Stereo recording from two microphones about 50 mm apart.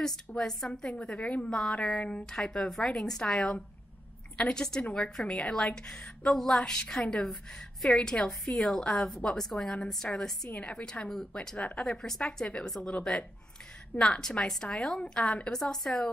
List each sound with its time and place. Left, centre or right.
0.3 s a woman's voice: centre
10.5 s a woman's voice: left